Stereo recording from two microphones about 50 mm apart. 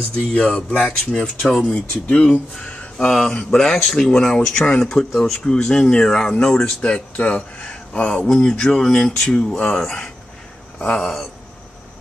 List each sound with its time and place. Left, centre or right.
0.3 s speech: left
3.0 s speech: centre
4.9 s speech: centre
5.4 s speech: centre
6.9 s speech: left; by 11.2 s centre